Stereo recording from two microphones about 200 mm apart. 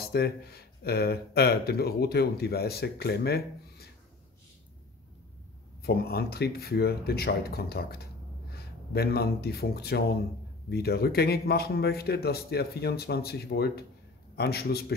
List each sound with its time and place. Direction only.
0.0 s speech: 50° left (ahead or behind)
5.8 s speech: 50° left (ahead or behind)